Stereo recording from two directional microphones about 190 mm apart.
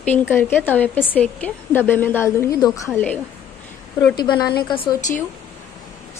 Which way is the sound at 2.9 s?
5° left (ahead or behind).